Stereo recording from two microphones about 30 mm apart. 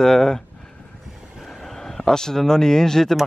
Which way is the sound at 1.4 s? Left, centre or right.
Centre.